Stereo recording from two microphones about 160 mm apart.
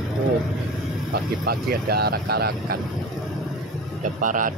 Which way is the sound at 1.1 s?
75° right (ahead or behind).